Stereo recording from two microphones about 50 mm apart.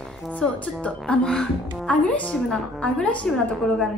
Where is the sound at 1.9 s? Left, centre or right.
Left.